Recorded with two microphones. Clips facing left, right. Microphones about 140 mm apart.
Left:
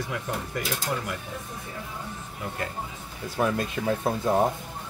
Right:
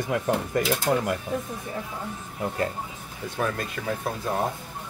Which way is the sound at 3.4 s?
15° left (ahead or behind).